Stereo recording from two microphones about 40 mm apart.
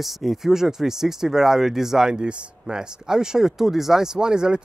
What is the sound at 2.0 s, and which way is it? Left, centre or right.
Speech, right.